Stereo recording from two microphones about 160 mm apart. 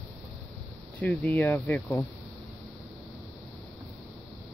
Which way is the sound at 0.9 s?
10° left (ahead or behind).